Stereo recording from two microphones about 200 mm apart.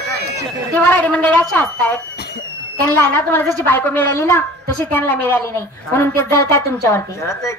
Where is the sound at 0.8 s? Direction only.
10° left (ahead or behind).